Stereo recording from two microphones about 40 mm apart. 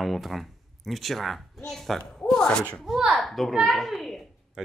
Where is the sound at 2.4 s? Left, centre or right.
Centre.